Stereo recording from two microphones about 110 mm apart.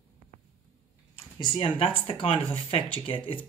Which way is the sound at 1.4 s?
50° left (ahead or behind).